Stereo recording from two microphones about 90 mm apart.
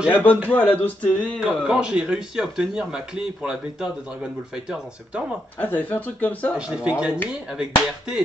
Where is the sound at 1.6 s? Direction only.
10° right (ahead or behind).